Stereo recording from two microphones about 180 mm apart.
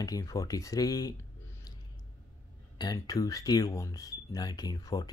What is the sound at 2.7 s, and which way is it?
Speech, 20° left (ahead or behind).